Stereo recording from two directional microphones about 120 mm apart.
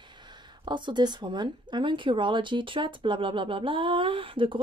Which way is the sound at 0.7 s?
40° right (ahead or behind).